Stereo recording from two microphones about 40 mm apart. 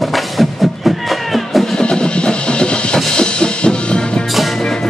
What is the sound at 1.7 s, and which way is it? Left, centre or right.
Music, left.